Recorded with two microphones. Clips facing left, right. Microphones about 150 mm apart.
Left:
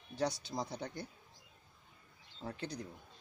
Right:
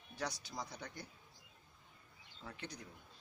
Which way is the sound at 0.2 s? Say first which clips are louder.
Left 7 dB; 25° left (ahead or behind).